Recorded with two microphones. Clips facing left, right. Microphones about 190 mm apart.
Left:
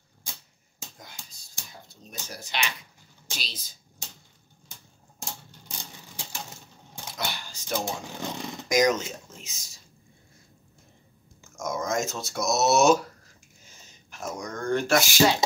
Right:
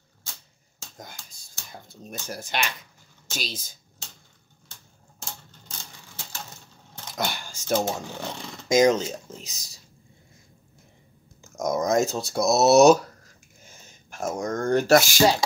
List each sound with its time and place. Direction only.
0.2 s a sound: 15° left (ahead or behind)
2.0 s speech: 50° right (ahead or behind)
5.2 s typewriter: 15° left (ahead or behind)
7.2 s a sound: 45° right (ahead or behind)
8.6 s speech: 25° right (ahead or behind)
11.5 s speech: 40° right (ahead or behind)
14.1 s speech: 45° right (ahead or behind)